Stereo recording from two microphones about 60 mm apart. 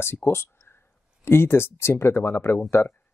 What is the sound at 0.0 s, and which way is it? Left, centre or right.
Speech, left.